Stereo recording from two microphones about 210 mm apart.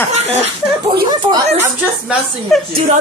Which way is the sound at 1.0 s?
20° right (ahead or behind).